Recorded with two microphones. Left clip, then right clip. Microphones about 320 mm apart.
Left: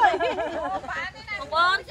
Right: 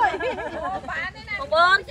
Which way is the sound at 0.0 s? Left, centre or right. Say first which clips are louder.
Left 2 dB; left.